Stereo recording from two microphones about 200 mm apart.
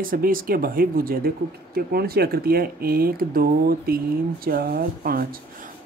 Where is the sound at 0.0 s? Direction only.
45° right (ahead or behind).